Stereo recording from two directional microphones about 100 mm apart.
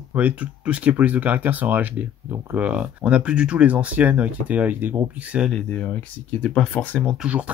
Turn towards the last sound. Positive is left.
turn(degrees=-10)  # may be behind; listen again after turning